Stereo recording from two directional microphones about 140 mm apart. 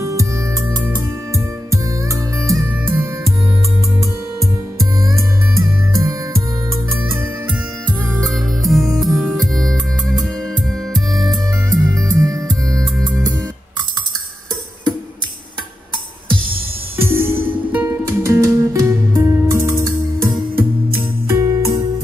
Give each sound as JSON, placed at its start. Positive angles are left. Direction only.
{"t": 0.0, "sound": "music", "side_deg": -20}
{"t": 5.6, "sound": "music", "side_deg": -20}
{"t": 8.3, "sound": "music", "side_deg": 0}
{"t": 11.7, "sound": "music", "side_deg": -25}
{"t": 16.9, "sound": "music", "side_deg": -15}